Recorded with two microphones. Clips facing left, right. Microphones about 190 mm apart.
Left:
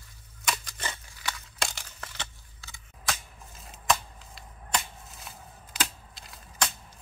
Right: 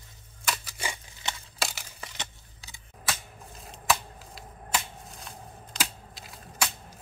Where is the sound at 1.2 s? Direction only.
20° right (ahead or behind).